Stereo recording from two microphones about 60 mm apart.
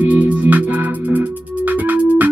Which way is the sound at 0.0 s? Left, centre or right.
Right.